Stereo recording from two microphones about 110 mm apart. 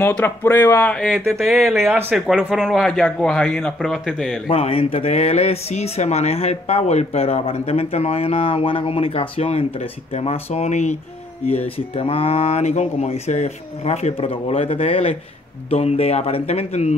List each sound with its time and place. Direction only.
0.2 s speech: 20° left (ahead or behind)
0.9 s a man's voice: 5° left (ahead or behind)
1.9 s speech: 20° right (ahead or behind)
2.1 s a man's voice: centre (ahead or behind)
4.5 s speech: 60° left (ahead or behind); by 11.0 s 90° left
11.4 s speech: 65° left (ahead or behind)
14.3 s speech: 60° left (ahead or behind)
15.7 s speech: 70° left (ahead or behind)